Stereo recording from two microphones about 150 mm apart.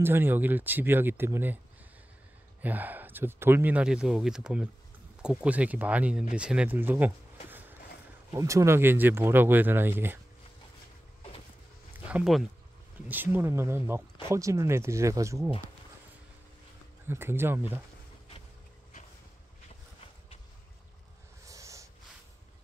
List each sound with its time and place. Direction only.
0.0 s speech: 15° right (ahead or behind)
2.6 s speech: 10° right (ahead or behind)
8.3 s speech: 20° right (ahead or behind)
12.1 s speech: 5° right (ahead or behind); by 15.5 s 20° right (ahead or behind)
17.1 s speech: 15° right (ahead or behind)
21.5 s a sound: 20° right (ahead or behind)